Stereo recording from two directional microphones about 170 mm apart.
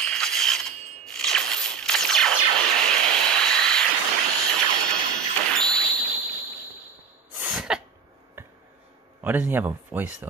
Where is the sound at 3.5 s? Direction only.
5° left (ahead or behind).